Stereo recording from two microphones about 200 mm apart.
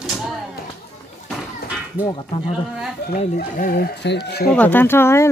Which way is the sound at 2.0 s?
10° right (ahead or behind).